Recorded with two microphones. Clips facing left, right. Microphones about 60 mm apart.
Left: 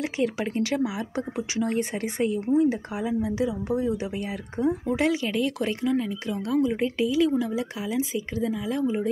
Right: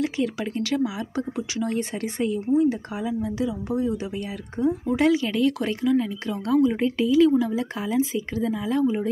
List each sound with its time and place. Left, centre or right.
0.0 s speech: left
8.5 s a woman's voice: centre